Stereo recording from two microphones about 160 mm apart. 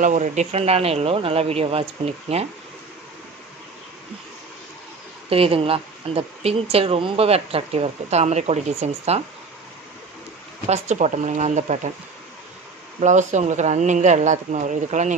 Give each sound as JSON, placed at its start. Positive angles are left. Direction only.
{"t": 0.0, "sound": "speech", "side_deg": -50}
{"t": 5.3, "sound": "speech", "side_deg": -35}
{"t": 10.7, "sound": "speech", "side_deg": -45}
{"t": 13.0, "sound": "speech", "side_deg": -50}